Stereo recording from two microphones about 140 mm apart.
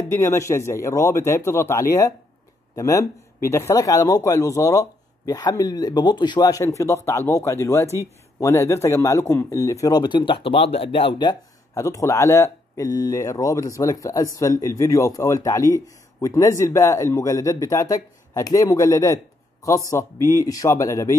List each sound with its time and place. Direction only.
0.1 s speech: 20° left (ahead or behind)